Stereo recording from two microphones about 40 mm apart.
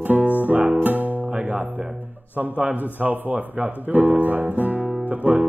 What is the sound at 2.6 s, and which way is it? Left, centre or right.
Music, right.